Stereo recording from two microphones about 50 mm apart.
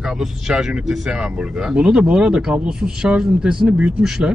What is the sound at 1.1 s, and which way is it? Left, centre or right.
A man's voice, centre.